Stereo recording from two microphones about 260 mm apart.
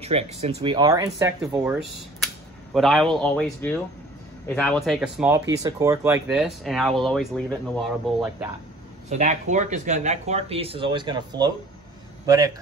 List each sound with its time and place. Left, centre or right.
0.3 s speech: right; by 8.5 s centre
9.1 s a man's voice: right